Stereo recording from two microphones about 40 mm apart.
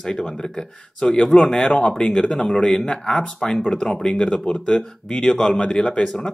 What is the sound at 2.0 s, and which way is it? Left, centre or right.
A man's voice, left.